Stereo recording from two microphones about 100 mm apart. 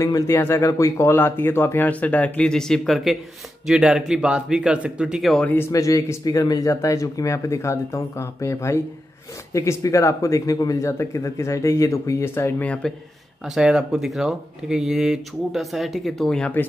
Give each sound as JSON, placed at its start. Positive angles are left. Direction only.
{"t": 0.0, "sound": "speech", "side_deg": 30}
{"t": 5.7, "sound": "speech", "side_deg": 35}
{"t": 12.6, "sound": "speech", "side_deg": 10}
{"t": 13.6, "sound": "speech", "side_deg": -5}